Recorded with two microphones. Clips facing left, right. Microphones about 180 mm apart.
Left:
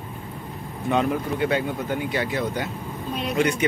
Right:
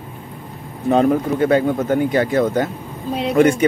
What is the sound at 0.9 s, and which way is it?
Speech, 40° right (ahead or behind).